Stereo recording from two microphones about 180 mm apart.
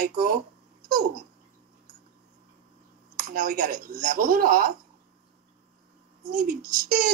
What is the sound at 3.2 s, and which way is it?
Speech, 50° right (ahead or behind).